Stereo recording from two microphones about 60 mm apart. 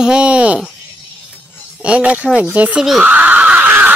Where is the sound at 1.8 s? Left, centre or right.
Right.